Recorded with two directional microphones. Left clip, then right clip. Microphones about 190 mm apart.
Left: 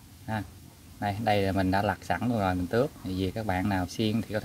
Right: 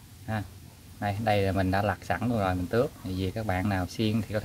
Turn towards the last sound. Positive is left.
turn(degrees=10)  # may be behind; listen again after turning